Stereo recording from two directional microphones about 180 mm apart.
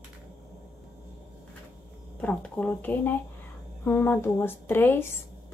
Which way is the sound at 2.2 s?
5° left (ahead or behind).